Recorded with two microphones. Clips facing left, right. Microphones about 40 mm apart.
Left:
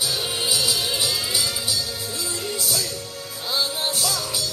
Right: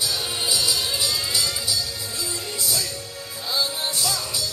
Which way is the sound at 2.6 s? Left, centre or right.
Centre.